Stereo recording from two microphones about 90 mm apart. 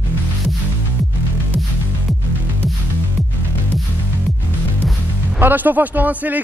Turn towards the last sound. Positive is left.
turn(degrees=-20)  # may be behind; listen again after turning